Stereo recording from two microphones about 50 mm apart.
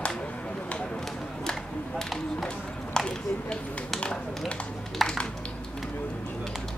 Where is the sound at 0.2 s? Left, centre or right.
Left.